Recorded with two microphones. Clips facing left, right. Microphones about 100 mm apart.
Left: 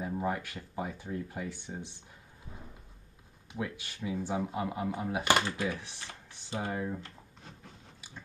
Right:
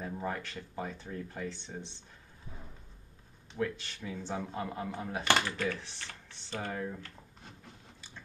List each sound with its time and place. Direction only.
0.0 s speech: 15° left (ahead or behind)
3.5 s speech: 10° left (ahead or behind)